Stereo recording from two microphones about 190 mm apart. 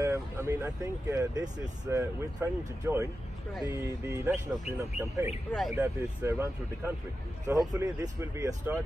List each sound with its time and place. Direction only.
0.0 s speech: 15° right (ahead or behind)
4.3 s speech: 5° right (ahead or behind)